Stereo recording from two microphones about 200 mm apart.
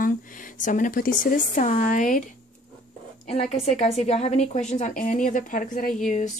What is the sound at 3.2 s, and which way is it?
Speech, 30° left (ahead or behind).